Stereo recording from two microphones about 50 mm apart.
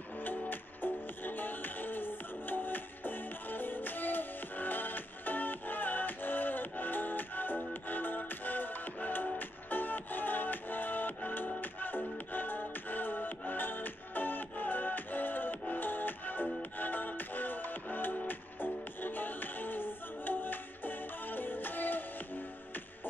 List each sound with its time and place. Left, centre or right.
0.2 s music: left